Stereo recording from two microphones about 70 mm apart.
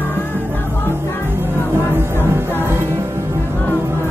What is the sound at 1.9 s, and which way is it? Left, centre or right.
Music, right.